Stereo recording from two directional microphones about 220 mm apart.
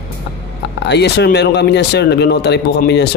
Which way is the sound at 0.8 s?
50° left (ahead or behind).